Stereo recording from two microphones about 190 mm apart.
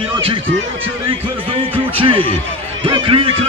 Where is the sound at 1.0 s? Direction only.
30° right (ahead or behind).